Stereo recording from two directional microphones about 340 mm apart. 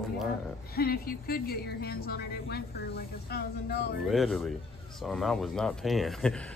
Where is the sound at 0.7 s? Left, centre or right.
Left.